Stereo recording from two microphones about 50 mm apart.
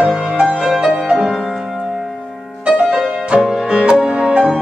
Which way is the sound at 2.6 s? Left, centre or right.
Centre.